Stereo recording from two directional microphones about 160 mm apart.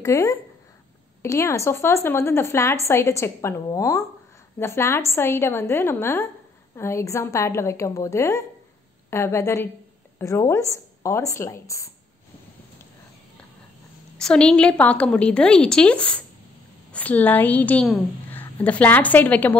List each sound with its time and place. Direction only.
0.0 s a woman's voice: 20° left (ahead or behind)
14.1 s a woman's voice: 5° left (ahead or behind)